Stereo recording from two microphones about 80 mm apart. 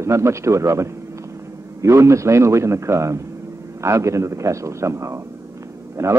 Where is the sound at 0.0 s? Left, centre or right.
Right.